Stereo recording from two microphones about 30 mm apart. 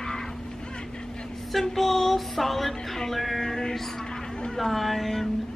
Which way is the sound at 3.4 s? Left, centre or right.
Centre.